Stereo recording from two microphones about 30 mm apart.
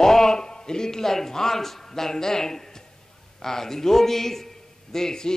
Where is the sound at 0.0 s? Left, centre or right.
Centre.